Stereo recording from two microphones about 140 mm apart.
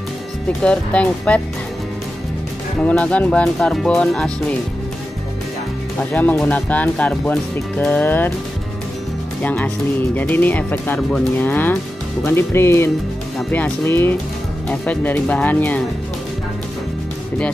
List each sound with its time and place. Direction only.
0.6 s speech: 10° left (ahead or behind)
2.8 s speech: 10° left (ahead or behind)
6.1 s speech: 10° left (ahead or behind)
9.4 s speech: 10° left (ahead or behind)